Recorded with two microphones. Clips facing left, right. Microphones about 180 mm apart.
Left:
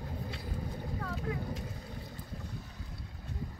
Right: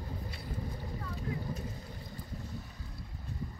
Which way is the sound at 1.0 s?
90° left.